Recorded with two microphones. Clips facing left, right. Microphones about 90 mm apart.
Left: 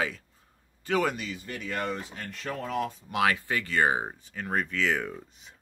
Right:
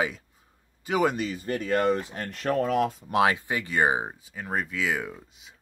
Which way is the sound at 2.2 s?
60° right (ahead or behind).